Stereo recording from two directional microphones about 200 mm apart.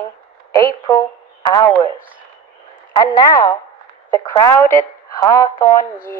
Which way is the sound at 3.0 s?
20° left (ahead or behind).